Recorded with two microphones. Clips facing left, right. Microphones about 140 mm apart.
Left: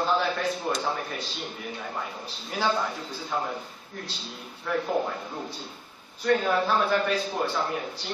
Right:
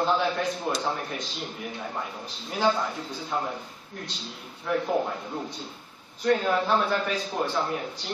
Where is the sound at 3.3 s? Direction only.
Centre (ahead or behind).